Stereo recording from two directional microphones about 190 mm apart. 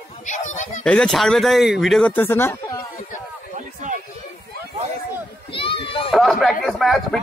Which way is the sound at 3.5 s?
40° right (ahead or behind).